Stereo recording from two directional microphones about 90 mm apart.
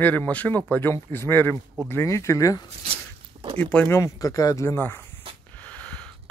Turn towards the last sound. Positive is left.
turn(degrees=15)  # may be behind; listen again after turning